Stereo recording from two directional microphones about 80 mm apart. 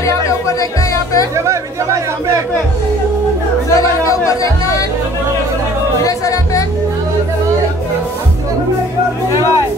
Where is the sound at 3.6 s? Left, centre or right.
Left.